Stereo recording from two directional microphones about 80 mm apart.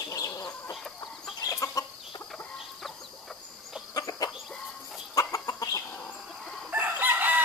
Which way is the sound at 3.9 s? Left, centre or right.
Left.